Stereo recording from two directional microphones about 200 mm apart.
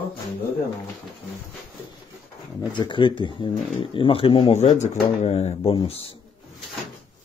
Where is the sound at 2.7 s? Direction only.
25° left (ahead or behind).